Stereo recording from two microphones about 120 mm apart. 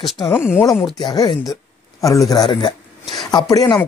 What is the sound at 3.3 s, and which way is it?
Speech, 35° left (ahead or behind).